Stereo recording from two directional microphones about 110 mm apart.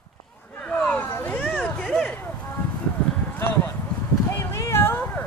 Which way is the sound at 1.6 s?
5° left (ahead or behind).